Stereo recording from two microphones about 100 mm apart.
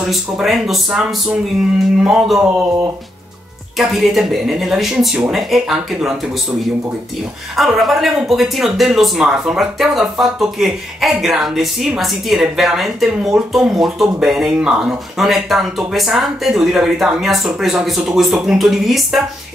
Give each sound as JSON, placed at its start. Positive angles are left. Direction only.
{"t": 0.0, "sound": "speech", "side_deg": -5}
{"t": 3.7, "sound": "speech", "side_deg": 0}
{"t": 7.5, "sound": "speech", "side_deg": 0}